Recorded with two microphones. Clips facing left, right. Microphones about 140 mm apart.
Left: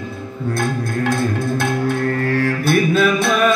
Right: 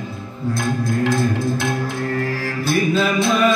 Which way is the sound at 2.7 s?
60° left (ahead or behind).